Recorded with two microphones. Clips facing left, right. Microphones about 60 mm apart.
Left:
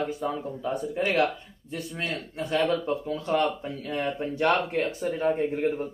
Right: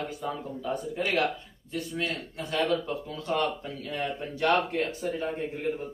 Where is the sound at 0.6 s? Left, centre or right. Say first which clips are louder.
Left 3 dB; left.